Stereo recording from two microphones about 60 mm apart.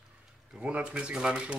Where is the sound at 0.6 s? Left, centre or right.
Centre.